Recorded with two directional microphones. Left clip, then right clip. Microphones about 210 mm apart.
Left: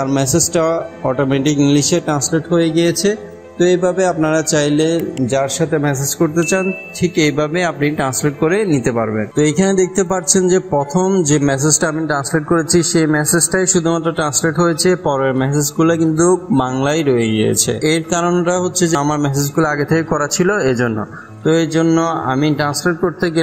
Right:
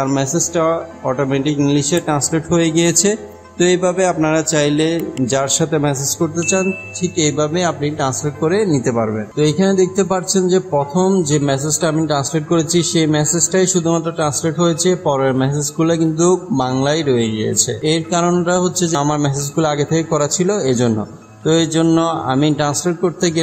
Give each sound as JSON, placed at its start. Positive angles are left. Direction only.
{"t": 0.0, "sound": "speech", "side_deg": 20}
{"t": 2.6, "sound": "speech", "side_deg": -25}
{"t": 3.5, "sound": "a man's voice", "side_deg": 0}
{"t": 6.1, "sound": "speech", "side_deg": 15}
{"t": 14.7, "sound": "a man's voice", "side_deg": 0}
{"t": 15.0, "sound": "speech", "side_deg": 10}
{"t": 19.8, "sound": "a man's voice", "side_deg": -5}
{"t": 20.1, "sound": "a man's voice", "side_deg": 10}